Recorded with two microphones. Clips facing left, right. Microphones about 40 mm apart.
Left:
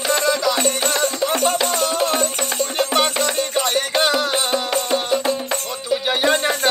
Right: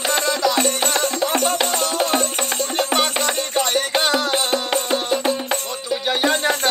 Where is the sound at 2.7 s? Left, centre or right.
Centre.